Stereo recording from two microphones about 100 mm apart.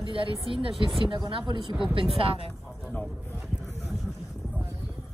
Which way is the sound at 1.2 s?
45° right (ahead or behind).